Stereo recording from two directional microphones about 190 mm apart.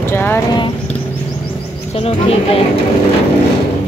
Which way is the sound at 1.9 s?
30° left (ahead or behind).